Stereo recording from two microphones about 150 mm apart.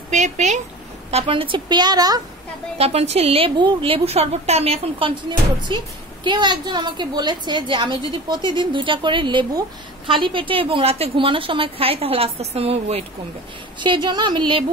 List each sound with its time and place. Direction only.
0.1 s speech: 50° right (ahead or behind)
1.1 s a woman's voice: 35° right (ahead or behind)
2.8 s a woman's voice: 45° right (ahead or behind)
13.7 s a woman's voice: 30° right (ahead or behind)